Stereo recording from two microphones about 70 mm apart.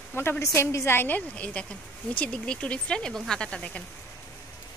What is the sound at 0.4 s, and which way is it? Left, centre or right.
A woman's voice, left.